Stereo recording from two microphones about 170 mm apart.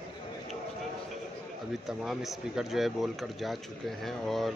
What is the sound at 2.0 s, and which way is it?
Speech, centre (ahead or behind).